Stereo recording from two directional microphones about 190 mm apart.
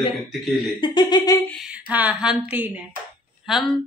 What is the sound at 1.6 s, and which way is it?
A woman's voice, 5° right (ahead or behind).